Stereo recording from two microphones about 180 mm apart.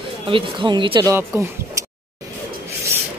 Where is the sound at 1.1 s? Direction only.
15° right (ahead or behind).